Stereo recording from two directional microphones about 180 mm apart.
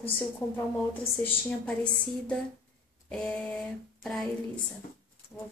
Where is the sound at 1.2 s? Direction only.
5° left (ahead or behind).